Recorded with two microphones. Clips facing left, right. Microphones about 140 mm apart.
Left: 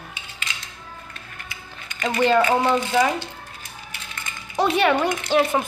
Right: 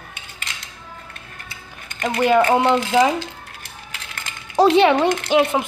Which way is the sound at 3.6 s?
75° right (ahead or behind).